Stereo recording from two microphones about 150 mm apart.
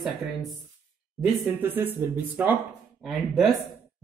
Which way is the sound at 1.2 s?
15° right (ahead or behind).